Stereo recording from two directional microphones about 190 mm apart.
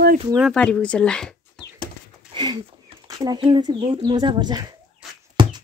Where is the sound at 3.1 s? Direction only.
20° right (ahead or behind).